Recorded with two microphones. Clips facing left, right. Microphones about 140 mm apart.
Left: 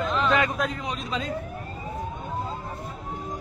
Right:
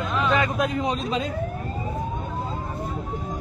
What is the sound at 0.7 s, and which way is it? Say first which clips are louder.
Speech: right 6 dB; 20° right (ahead or behind).